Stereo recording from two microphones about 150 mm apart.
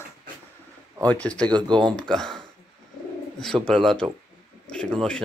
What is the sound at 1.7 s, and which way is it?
Speech, 30° right (ahead or behind).